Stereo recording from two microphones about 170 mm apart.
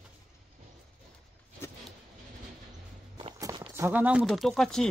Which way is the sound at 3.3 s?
20° right (ahead or behind).